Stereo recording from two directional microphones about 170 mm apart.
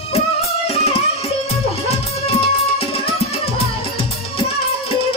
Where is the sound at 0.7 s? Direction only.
35° left (ahead or behind).